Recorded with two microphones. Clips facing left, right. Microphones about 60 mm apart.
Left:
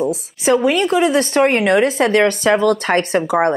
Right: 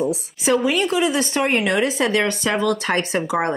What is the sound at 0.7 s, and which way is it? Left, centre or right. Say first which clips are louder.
A woman's voice: left 4 dB; left.